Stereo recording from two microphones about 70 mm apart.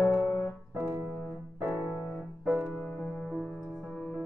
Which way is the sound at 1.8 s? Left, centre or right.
Left.